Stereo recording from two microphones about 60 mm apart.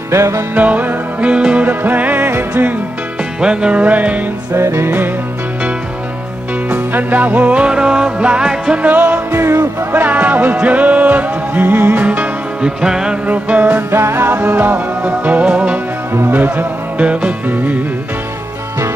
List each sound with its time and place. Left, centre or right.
0.1 s music: right
0.6 s music: right
1.7 s music: right
3.3 s music: centre
4.6 s music: right
6.7 s music: right; by 8.8 s centre
8.8 s music: right
9.4 s music: right
9.9 s music: right
12.6 s music: centre
13.3 s music: right
13.8 s music: right; by 15.8 s centre
16.1 s music: right
16.3 s music: right